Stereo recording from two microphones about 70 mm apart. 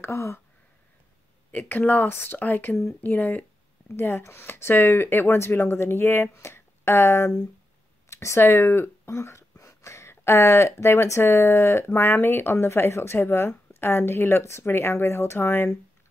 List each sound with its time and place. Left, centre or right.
0.0 s speech: left
1.5 s speech: left
3.0 s speech: left
3.9 s speech: left